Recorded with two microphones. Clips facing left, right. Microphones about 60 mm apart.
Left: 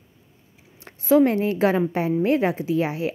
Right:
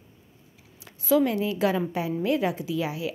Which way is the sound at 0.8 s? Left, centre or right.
Left.